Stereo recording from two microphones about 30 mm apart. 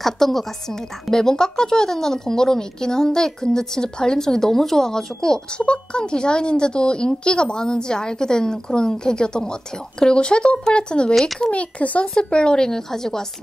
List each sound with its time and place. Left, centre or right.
0.0 s a woman's voice: centre
5.7 s a woman's voice: left
11.5 s speech: left
12.2 s a woman's voice: left